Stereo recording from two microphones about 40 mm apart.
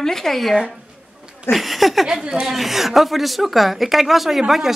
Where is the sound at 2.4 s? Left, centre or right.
Centre.